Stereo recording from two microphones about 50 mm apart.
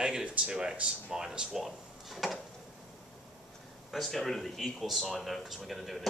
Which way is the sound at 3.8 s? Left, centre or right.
Centre.